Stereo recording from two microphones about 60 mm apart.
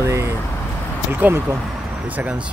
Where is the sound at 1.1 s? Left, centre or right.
Right.